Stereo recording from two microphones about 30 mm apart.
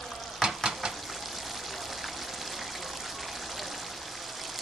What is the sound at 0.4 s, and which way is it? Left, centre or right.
Frying, right.